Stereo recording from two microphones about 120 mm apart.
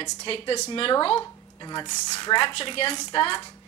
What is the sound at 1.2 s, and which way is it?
A woman's voice, 35° left (ahead or behind).